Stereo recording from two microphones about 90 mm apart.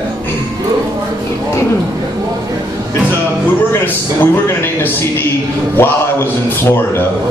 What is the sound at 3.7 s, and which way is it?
Speech, 25° left (ahead or behind).